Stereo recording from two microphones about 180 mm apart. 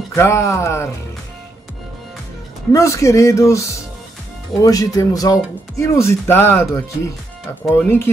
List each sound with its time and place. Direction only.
0.1 s speech: 15° left (ahead or behind)
2.7 s speech: 15° left (ahead or behind)